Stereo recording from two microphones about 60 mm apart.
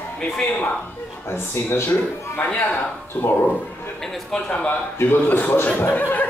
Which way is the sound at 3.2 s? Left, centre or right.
Left.